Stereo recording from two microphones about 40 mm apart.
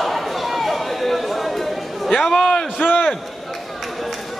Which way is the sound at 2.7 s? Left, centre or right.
Left.